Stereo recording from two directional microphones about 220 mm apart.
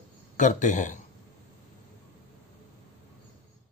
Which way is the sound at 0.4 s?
35° left (ahead or behind).